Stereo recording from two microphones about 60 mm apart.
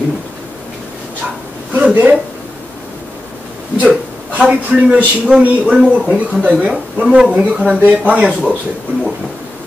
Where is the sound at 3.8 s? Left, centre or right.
Centre.